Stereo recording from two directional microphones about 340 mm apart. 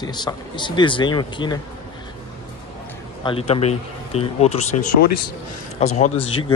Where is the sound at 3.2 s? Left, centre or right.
Centre.